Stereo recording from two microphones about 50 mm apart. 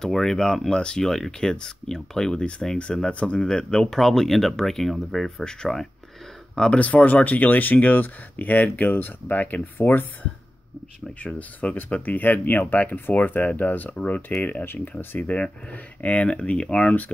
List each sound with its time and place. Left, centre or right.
0.0 s speech: centre
3.3 s speech: centre
6.8 s speech: left
9.8 s speech: left
11.2 s speech: left
14.6 s speech: left
15.2 s speech: left